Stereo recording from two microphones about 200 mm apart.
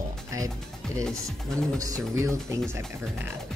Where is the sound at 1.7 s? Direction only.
15° right (ahead or behind).